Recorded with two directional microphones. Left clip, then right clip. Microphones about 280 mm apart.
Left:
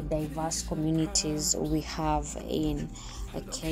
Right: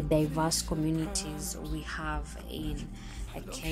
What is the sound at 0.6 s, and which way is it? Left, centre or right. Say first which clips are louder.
Speech: left 2 dB; centre.